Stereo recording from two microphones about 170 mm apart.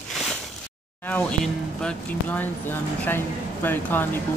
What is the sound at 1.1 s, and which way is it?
Music, 10° left (ahead or behind).